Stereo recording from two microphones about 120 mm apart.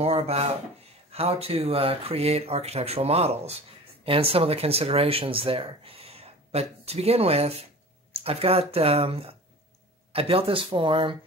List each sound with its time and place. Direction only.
0.0 s speech: 60° right (ahead or behind)